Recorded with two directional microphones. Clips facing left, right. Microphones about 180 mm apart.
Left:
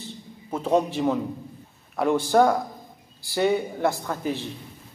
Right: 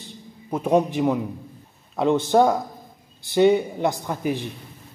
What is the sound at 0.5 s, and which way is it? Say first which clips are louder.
A man's voice: right 2 dB; 15° right (ahead or behind).